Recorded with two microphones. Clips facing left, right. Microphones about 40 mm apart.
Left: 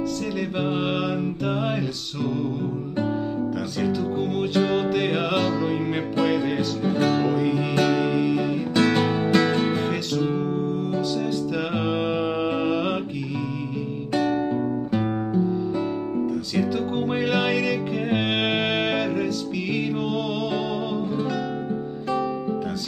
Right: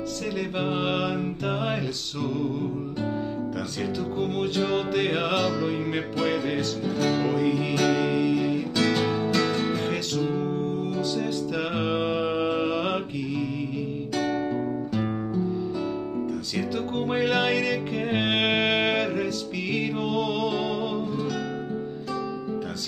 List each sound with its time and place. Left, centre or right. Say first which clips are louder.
0.6 s music: left 1 dB; centre
3.8 s music: left 3 dB; centre
6.8 s music: left 5 dB; left
7.2 s music: left 2 dB; centre
8.7 s music: left 5 dB; left
11.8 s music: even; centre
14.1 s music: left 5 dB; left
16.5 s music: left 4 dB; centre